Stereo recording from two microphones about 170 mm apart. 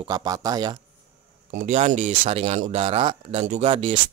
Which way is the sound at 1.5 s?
50° right (ahead or behind).